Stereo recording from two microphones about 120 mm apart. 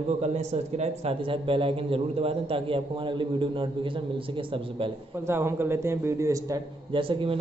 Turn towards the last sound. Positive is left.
turn(degrees=-45)  # may be behind; listen again after turning